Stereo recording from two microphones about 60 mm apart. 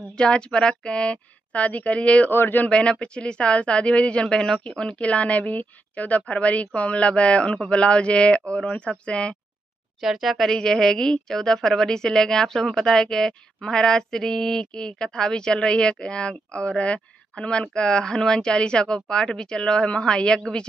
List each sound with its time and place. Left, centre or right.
0.2 s speech: centre
2.3 s speech: left
2.6 s a woman's voice: centre
9.9 s a woman's voice: centre